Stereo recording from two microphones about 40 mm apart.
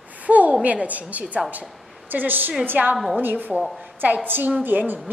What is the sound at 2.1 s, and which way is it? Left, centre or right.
A woman's voice, right.